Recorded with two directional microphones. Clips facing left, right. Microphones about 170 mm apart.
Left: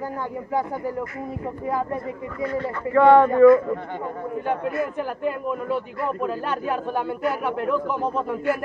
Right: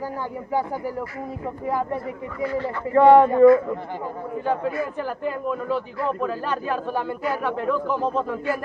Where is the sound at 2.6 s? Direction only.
30° right (ahead or behind).